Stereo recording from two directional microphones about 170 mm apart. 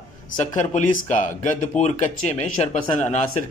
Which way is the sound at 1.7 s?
40° left (ahead or behind).